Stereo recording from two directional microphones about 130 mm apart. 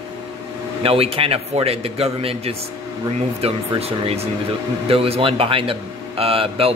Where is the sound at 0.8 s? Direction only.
45° right (ahead or behind).